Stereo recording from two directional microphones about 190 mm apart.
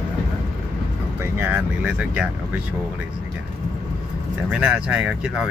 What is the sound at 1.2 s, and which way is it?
Vehicle, 10° right (ahead or behind).